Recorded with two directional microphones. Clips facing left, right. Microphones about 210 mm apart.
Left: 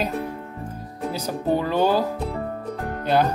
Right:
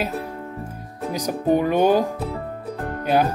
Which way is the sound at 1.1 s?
15° right (ahead or behind).